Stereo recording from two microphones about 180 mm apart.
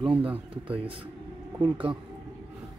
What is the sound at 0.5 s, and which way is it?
Speech, 30° right (ahead or behind).